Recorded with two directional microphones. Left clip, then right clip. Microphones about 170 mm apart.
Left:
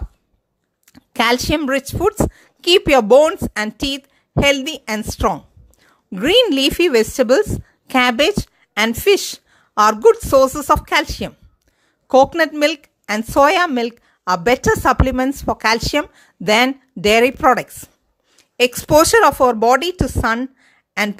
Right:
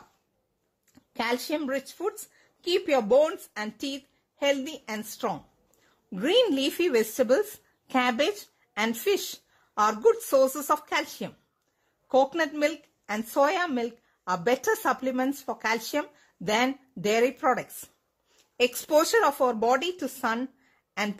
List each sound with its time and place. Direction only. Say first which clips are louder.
0.8 s a woman's voice: left 13 dB; 35° left (ahead or behind)